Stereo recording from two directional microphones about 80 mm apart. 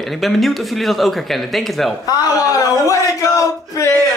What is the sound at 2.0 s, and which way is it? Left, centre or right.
Speech, left.